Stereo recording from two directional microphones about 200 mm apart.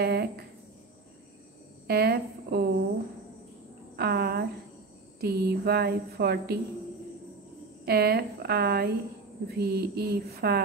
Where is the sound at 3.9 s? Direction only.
50° right (ahead or behind).